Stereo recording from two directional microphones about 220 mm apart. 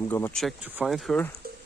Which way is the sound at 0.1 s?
5° left (ahead or behind).